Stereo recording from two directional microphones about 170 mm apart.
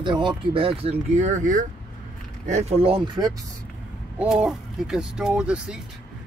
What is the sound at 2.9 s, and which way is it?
Speech, 25° right (ahead or behind).